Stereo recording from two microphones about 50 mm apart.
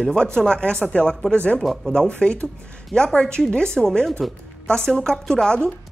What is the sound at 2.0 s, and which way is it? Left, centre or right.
Speech, centre.